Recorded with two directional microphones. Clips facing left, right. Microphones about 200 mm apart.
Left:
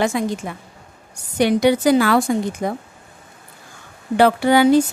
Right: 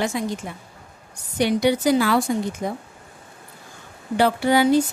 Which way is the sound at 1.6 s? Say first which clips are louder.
Left 3 dB; 80° left.